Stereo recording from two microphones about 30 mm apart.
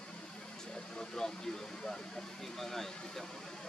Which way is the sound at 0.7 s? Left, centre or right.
Left.